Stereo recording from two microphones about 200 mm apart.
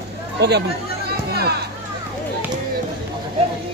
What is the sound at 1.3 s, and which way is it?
Speech, 55° right (ahead or behind).